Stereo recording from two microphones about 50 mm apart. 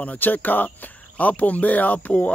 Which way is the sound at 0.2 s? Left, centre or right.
Left.